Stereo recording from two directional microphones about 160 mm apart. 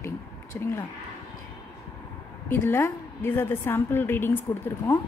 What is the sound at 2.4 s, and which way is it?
A woman's voice, 15° left (ahead or behind).